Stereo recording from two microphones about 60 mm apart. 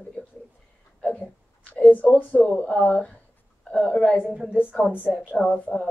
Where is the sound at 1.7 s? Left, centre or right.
Left.